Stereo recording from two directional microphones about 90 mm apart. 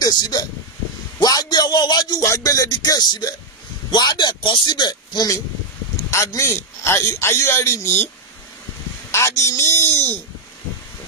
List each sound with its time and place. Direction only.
0.0 s speech: 50° left (ahead or behind)
2.2 s music: 40° left (ahead or behind)
3.9 s speech: 55° left (ahead or behind)
6.0 s a man's voice: 30° left (ahead or behind)
9.1 s a man's voice: 30° left (ahead or behind)